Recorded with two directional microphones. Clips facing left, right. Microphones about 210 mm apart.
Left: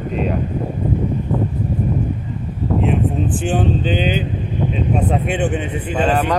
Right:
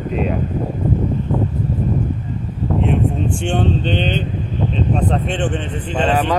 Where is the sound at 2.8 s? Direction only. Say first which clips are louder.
Right 1 dB; 5° left (ahead or behind).